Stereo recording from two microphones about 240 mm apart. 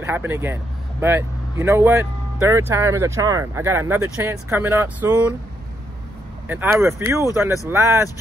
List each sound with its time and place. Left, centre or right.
0.0 s speech: centre
6.4 s speech: centre